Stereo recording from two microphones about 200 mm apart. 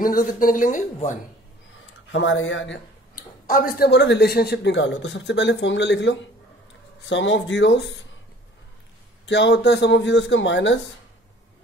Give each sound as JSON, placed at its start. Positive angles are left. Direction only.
{"t": 0.0, "sound": "speech", "side_deg": 45}
{"t": 2.1, "sound": "speech", "side_deg": 70}
{"t": 3.2, "sound": "speech", "side_deg": 40}
{"t": 9.2, "sound": "speech", "side_deg": 65}